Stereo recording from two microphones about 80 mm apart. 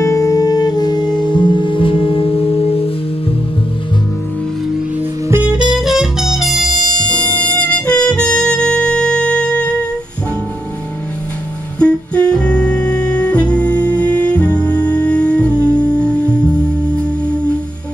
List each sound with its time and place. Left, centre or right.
0.0 s music: left
5.7 s music: centre
7.1 s music: centre
11.8 s music: centre